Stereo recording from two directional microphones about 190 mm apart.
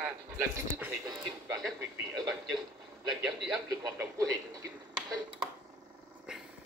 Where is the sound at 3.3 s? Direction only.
5° right (ahead or behind).